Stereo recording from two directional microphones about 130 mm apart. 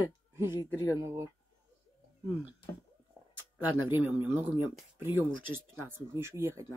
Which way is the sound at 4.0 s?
15° right (ahead or behind).